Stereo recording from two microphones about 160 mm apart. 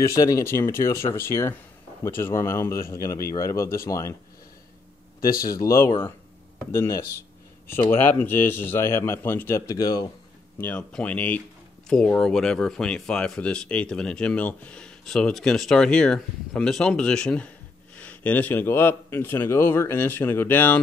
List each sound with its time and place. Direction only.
0.1 s speech: 20° left (ahead or behind)
5.2 s speech: 65° left (ahead or behind)
5.5 s speech: 20° left (ahead or behind)
10.6 s speech: 10° left (ahead or behind)